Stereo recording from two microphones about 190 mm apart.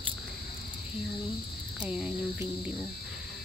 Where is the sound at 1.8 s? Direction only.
5° right (ahead or behind).